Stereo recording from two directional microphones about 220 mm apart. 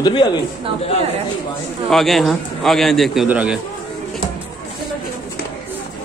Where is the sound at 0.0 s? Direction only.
20° left (ahead or behind).